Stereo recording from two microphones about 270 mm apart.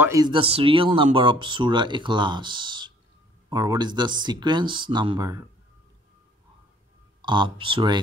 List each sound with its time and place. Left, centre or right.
0.0 s speech: centre
7.2 s speech: centre